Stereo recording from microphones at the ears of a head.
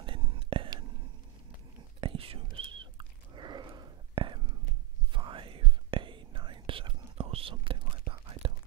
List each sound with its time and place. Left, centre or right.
0.0 s whispering: right